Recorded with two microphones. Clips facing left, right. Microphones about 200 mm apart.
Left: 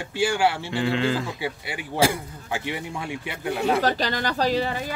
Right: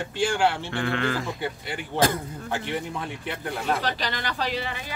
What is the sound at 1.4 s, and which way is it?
Speech, 10° left (ahead or behind).